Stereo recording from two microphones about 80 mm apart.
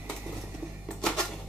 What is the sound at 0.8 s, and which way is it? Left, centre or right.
Typewriter, centre.